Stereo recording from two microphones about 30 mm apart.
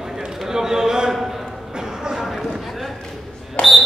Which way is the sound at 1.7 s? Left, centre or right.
Right.